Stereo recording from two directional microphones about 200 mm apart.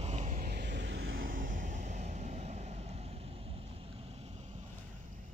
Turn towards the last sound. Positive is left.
turn(degrees=-35)  # may be behind; listen again after turning